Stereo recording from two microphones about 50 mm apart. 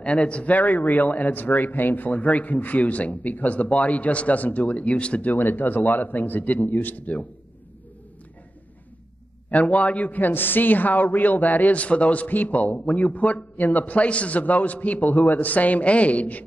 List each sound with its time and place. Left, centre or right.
0.0 s speech: left
9.5 s speech: left